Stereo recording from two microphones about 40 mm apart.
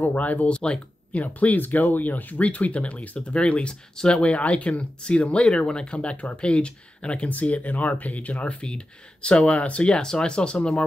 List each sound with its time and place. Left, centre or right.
0.0 s speech: left
0.5 s speech: left
1.1 s speech: left
4.1 s speech: left